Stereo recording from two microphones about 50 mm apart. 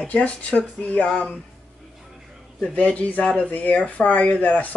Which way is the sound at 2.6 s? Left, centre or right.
Left.